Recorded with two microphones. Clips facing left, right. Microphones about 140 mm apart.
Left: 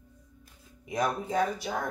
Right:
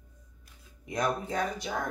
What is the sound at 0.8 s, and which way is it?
Speech, 5° left (ahead or behind).